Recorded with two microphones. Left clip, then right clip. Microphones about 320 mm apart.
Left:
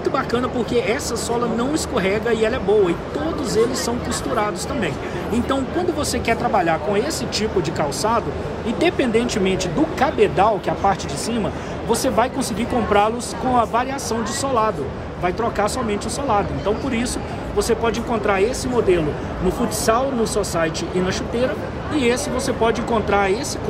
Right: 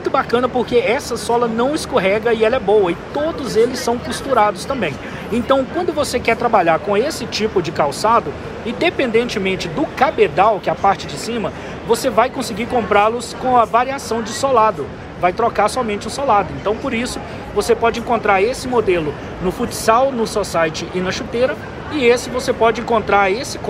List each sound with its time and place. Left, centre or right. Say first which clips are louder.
0.1 s speech: right 5 dB; centre
5.3 s speech: right 7 dB; centre